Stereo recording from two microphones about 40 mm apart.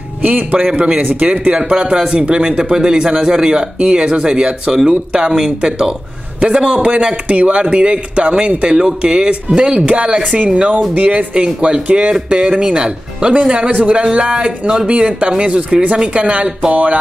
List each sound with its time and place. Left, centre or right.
0.2 s speech: right
0.7 s a man's voice: right
13.7 s speech: right
14.0 s a man's voice: right